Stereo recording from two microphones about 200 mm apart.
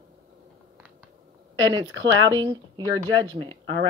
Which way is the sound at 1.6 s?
20° right (ahead or behind).